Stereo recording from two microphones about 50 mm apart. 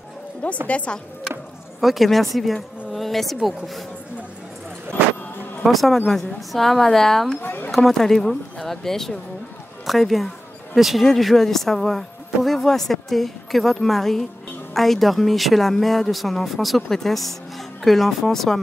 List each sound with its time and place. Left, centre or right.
0.7 s speech: left
1.8 s speech: centre
2.9 s insect: centre
3.4 s speech: centre
5.6 s speech: centre
7.4 s a sound: left
7.7 s a woman's voice: centre